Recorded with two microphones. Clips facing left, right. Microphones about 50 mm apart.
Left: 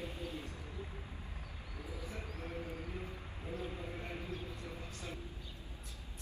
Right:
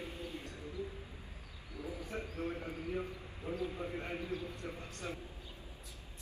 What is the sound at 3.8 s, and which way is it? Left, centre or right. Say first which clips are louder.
Clip-clop: right 4 dB; right.